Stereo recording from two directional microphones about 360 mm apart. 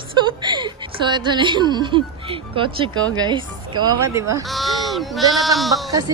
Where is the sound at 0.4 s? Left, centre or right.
Centre.